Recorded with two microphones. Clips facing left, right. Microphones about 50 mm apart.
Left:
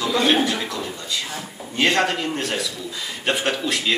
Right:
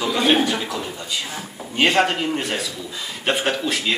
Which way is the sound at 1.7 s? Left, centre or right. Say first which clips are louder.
Right 2 dB; centre.